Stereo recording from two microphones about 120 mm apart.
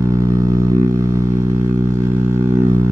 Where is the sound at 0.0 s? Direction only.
25° right (ahead or behind).